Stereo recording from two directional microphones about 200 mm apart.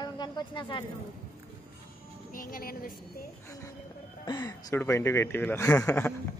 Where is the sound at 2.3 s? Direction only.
45° left (ahead or behind).